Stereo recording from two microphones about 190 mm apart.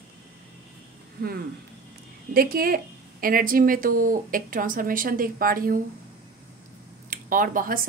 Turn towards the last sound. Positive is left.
turn(degrees=-45)  # may be behind; listen again after turning